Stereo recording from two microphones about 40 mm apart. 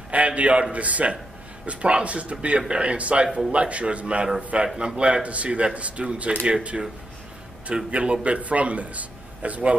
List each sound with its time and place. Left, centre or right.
0.1 s a man's voice: right
4.7 s a man's voice: right